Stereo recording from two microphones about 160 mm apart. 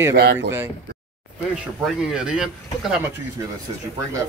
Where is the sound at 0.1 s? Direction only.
90° right.